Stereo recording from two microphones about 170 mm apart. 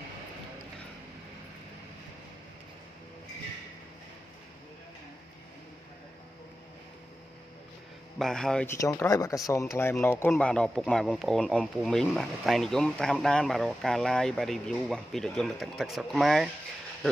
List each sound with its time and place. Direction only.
8.2 s speech: 5° left (ahead or behind)
8.6 s speech: 15° left (ahead or behind); by 16.4 s centre (ahead or behind)